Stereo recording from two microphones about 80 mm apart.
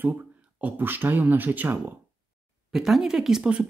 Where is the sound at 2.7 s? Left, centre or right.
Centre.